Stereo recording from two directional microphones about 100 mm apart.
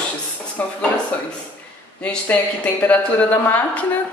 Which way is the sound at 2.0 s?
10° left (ahead or behind).